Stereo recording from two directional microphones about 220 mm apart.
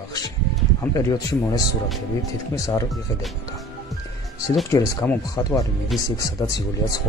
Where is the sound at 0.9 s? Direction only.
15° left (ahead or behind).